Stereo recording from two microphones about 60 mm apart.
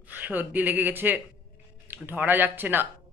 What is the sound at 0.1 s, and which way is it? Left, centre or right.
Speech, right.